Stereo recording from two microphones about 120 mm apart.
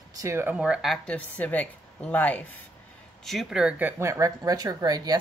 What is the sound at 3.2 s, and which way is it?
Speech, centre (ahead or behind).